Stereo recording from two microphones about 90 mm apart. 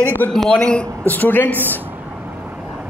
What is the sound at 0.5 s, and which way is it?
A man's voice, 10° left (ahead or behind).